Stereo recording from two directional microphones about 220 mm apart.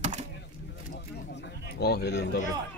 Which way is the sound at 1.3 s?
50° left (ahead or behind).